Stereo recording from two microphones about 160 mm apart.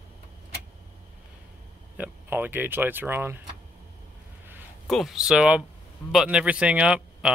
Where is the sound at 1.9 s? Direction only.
10° right (ahead or behind).